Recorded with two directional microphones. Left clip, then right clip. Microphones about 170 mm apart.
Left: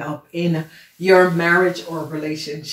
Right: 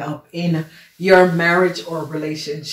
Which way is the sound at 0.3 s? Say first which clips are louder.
Left 1 dB; 25° right (ahead or behind).